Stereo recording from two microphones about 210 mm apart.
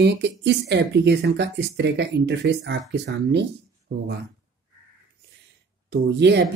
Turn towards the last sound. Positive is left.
turn(degrees=-55)  # may be behind; listen again after turning